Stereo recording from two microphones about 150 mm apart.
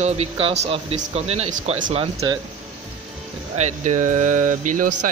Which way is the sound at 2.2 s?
30° right (ahead or behind).